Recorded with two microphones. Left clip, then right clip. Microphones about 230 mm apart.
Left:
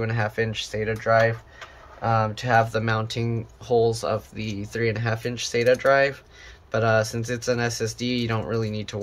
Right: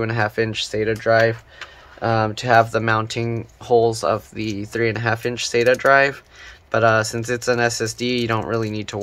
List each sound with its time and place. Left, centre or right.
0.0 s speech: right